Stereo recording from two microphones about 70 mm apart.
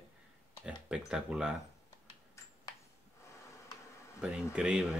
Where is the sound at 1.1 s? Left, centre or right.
Centre.